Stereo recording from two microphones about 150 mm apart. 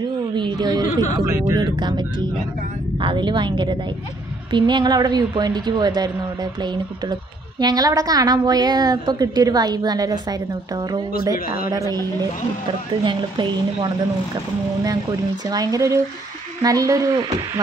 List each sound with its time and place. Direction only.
0.4 s a woman's voice: 30° right (ahead or behind)
11.3 s speech: 75° left (ahead or behind)
11.7 s a woman's voice: 25° right (ahead or behind)
13.0 s a woman's voice: 30° right (ahead or behind)